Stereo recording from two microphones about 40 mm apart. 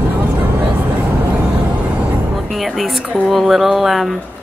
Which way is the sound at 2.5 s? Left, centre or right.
Centre.